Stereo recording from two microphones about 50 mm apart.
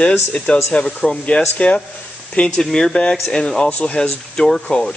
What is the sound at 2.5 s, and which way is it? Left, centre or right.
Speech, centre.